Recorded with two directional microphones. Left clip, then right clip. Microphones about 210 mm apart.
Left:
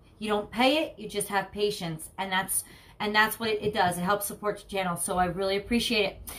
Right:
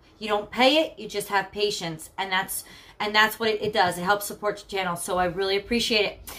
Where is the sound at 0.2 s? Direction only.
Centre (ahead or behind).